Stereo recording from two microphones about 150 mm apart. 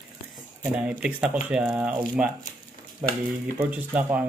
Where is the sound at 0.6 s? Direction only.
10° right (ahead or behind).